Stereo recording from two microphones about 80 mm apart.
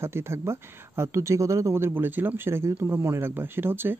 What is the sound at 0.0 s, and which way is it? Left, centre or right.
Speech, right.